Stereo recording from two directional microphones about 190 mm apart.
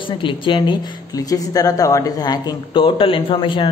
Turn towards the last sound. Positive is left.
turn(degrees=25)  # may be behind; listen again after turning